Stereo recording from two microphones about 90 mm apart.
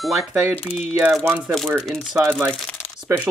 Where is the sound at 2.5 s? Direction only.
10° left (ahead or behind).